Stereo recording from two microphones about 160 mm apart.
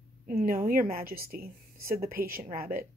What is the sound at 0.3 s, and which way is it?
A woman's voice, 60° right (ahead or behind).